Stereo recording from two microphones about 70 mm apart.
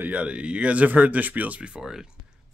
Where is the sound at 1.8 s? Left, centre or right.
Centre.